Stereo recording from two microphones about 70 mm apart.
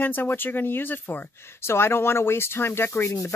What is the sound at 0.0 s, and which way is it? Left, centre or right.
Speech, left.